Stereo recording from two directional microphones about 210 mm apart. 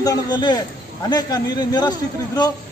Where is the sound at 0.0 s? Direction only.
20° left (ahead or behind).